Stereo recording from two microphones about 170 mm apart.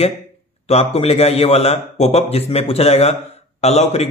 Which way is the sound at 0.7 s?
35° left (ahead or behind).